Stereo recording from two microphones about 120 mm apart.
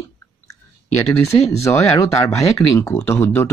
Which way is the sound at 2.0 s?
25° left (ahead or behind).